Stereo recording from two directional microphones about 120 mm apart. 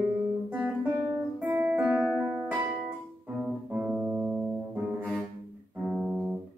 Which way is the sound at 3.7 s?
15° right (ahead or behind).